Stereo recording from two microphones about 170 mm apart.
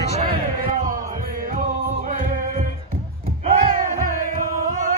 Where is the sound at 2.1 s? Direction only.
50° right (ahead or behind).